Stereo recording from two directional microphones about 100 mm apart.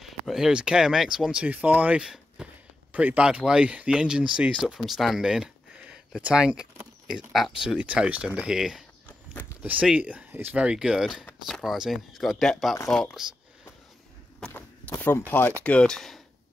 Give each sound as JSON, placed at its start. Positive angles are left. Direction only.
{"t": 0.0, "sound": "speech", "side_deg": -5}
{"t": 9.0, "sound": "a sound", "side_deg": 20}
{"t": 9.6, "sound": "speech", "side_deg": -15}
{"t": 14.5, "sound": "speech", "side_deg": 20}